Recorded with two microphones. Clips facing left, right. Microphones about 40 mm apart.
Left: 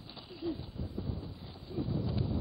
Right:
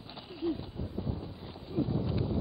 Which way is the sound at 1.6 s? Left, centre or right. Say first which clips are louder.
Right 4 dB; centre.